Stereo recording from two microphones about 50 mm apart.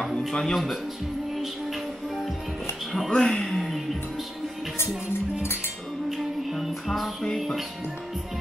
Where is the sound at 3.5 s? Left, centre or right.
Centre.